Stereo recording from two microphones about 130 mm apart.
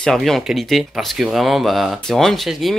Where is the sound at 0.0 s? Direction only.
5° left (ahead or behind).